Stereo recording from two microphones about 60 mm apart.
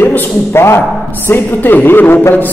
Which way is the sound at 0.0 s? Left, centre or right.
Left.